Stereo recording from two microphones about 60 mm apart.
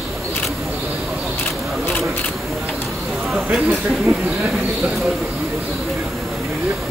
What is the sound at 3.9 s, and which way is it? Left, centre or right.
Speech, centre.